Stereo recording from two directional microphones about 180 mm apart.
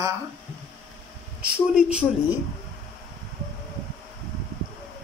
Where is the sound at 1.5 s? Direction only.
5° right (ahead or behind).